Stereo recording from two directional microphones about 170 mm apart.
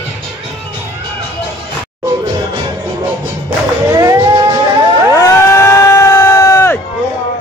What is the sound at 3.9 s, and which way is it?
Music, 20° right (ahead or behind).